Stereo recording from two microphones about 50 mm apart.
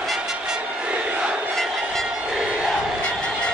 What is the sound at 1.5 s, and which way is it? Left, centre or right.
Music, centre.